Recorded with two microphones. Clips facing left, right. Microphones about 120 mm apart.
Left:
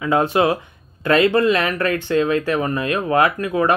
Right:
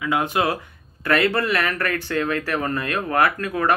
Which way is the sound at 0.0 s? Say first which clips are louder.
Left 5 dB; 30° left (ahead or behind).